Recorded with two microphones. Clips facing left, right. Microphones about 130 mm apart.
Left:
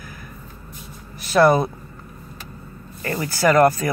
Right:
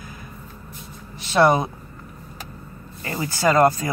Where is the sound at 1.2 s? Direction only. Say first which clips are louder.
Left 2 dB; 20° right (ahead or behind).